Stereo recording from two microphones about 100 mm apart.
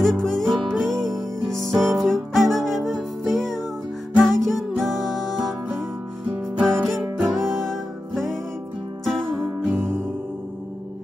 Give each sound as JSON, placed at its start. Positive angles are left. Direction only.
{"t": 0.0, "sound": "music", "side_deg": 5}
{"t": 6.6, "sound": "music", "side_deg": 0}
{"t": 9.8, "sound": "music", "side_deg": -25}